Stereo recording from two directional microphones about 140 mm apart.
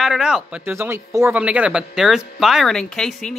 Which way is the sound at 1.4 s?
10° right (ahead or behind).